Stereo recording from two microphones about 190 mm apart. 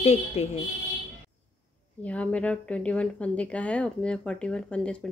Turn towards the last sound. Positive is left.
turn(degrees=5)  # may be behind; listen again after turning